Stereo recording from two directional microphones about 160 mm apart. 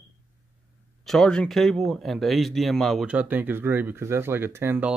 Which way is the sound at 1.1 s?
5° left (ahead or behind).